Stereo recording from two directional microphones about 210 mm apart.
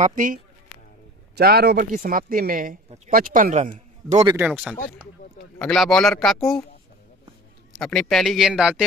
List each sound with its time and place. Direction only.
0.0 s speech: 40° right (ahead or behind)
1.3 s speech: 50° right (ahead or behind); by 4.2 s 35° right (ahead or behind)
4.4 s a man's voice: 5° right (ahead or behind)
7.8 s a man's voice: centre (ahead or behind)